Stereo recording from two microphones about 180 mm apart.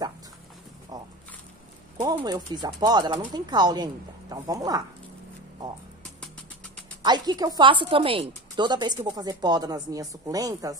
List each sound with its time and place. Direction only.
0.9 s a sound: 20° right (ahead or behind)
2.0 s a woman's voice: 20° right (ahead or behind)
7.0 s a woman's voice: 20° right (ahead or behind)